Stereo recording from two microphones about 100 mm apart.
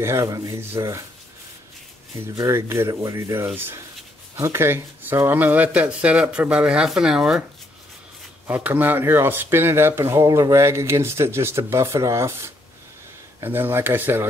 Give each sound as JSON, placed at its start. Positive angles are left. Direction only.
{"t": 0.0, "sound": "speech", "side_deg": -25}
{"t": 2.3, "sound": "speech", "side_deg": -30}
{"t": 8.5, "sound": "speech", "side_deg": -15}